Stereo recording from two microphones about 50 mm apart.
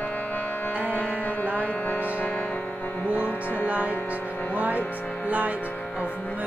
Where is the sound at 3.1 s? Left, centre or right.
Left.